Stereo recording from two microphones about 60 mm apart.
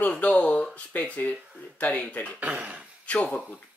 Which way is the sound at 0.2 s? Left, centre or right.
Left.